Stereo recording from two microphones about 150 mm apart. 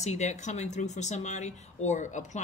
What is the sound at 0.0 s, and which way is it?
Speech, 50° left (ahead or behind).